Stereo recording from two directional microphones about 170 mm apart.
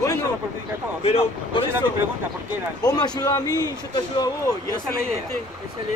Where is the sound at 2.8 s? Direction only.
25° left (ahead or behind).